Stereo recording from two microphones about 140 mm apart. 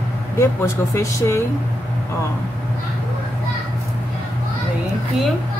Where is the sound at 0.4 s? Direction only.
20° left (ahead or behind).